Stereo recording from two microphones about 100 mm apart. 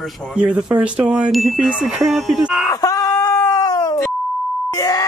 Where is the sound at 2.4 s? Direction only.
10° right (ahead or behind).